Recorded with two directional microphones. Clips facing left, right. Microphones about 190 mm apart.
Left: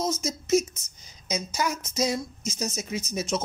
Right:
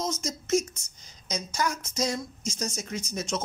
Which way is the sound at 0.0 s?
5° left (ahead or behind).